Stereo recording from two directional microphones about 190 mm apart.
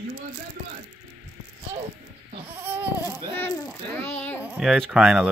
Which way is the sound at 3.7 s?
10° left (ahead or behind).